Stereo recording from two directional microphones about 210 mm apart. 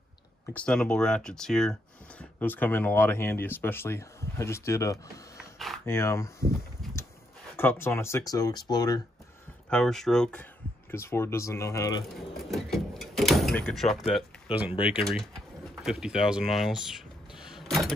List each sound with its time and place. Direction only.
0.5 s speech: 5° left (ahead or behind)
5.4 s a sound: centre (ahead or behind)
5.9 s speech: 15° left (ahead or behind)
7.5 s speech: 10° left (ahead or behind)
9.7 s speech: 5° left (ahead or behind)
12.4 s door: centre (ahead or behind)
14.1 s speech: 5° right (ahead or behind)
15.0 s a sound: centre (ahead or behind)